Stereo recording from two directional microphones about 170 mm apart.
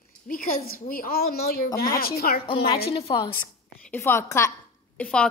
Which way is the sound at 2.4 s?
35° left (ahead or behind).